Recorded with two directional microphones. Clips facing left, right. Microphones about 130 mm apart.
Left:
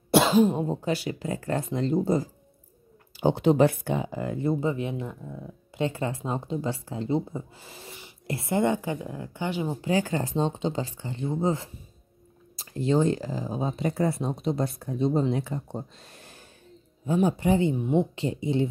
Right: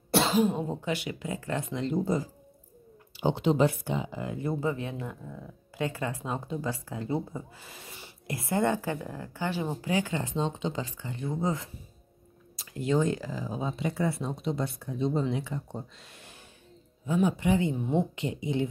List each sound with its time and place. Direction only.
0.5 s speech: 35° left (ahead or behind)
3.2 s speech: 45° left (ahead or behind)
4.5 s speech: 25° left (ahead or behind)
9.8 s speech: 40° left (ahead or behind)